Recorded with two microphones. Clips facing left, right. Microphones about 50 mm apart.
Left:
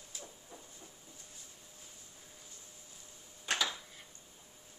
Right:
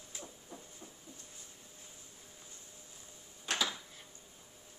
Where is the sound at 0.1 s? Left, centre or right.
Right.